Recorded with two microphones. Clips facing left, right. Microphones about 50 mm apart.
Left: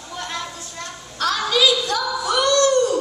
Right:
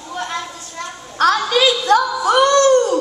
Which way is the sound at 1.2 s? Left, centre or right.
Right.